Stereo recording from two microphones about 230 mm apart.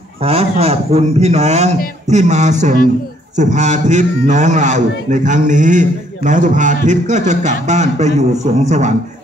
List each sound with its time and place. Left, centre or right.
0.2 s a man's voice: right